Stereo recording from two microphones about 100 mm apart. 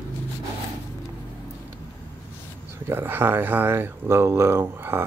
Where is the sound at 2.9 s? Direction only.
20° right (ahead or behind).